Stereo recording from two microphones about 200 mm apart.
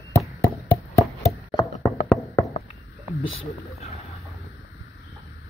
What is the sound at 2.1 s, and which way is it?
Music, 10° left (ahead or behind).